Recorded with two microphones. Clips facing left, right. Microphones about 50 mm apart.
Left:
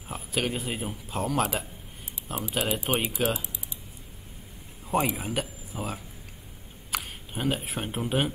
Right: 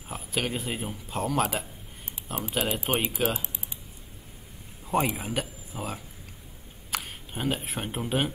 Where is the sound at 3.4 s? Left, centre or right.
Right.